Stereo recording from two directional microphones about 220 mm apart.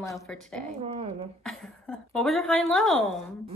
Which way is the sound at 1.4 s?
Centre (ahead or behind).